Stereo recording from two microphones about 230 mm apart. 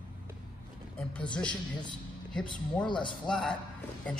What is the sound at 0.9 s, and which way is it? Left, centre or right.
Speech, centre.